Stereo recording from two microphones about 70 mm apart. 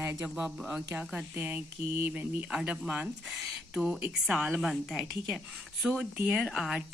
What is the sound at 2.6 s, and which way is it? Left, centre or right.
Speech, right.